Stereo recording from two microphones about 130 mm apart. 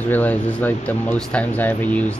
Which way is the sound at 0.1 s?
10° left (ahead or behind).